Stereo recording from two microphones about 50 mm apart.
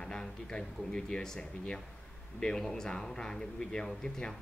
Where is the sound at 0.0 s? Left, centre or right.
Centre.